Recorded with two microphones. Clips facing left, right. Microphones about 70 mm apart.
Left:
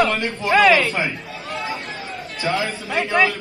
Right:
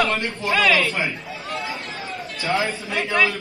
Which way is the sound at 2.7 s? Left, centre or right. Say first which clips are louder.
Left 3 dB; left.